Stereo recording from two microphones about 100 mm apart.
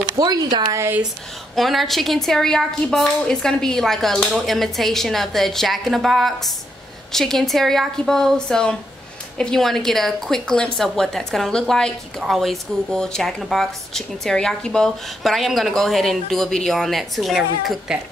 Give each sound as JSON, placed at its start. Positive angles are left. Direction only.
{"t": 0.2, "sound": "speech", "side_deg": -45}
{"t": 0.7, "sound": "speech", "side_deg": -20}
{"t": 1.5, "sound": "speech", "side_deg": 0}